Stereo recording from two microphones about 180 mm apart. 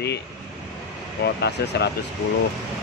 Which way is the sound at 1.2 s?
70° left (ahead or behind).